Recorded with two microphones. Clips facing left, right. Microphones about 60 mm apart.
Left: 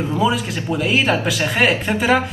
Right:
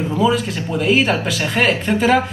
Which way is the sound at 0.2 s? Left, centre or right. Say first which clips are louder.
Right 3 dB; centre.